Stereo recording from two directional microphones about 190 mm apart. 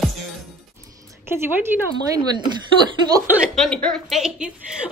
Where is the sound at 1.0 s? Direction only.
15° right (ahead or behind).